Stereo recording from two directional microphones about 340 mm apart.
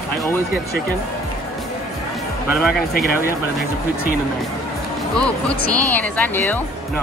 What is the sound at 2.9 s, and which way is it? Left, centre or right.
Speech, left.